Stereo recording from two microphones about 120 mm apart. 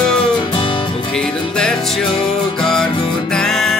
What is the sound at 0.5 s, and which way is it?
Music, 45° left (ahead or behind).